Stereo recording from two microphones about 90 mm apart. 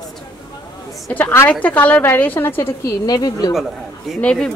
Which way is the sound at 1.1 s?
20° left (ahead or behind).